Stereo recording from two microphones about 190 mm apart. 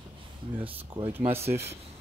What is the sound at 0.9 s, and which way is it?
Speech, 30° right (ahead or behind).